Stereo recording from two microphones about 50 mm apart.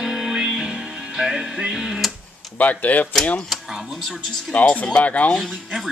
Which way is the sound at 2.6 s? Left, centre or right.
Left.